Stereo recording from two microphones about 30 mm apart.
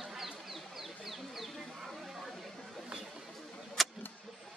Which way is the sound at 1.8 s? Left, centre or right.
Centre.